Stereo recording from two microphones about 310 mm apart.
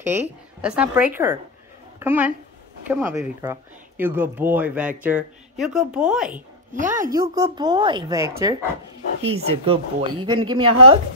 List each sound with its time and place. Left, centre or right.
0.6 s a woman's voice: centre
6.7 s speech: right
7.2 s a woman's voice: centre